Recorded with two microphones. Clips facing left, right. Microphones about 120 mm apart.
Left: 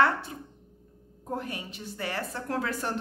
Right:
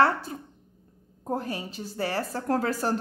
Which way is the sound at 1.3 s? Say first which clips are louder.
Right 4 dB; 35° right (ahead or behind).